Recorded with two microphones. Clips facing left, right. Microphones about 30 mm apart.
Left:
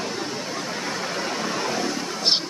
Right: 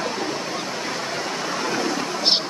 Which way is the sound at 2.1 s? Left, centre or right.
Centre.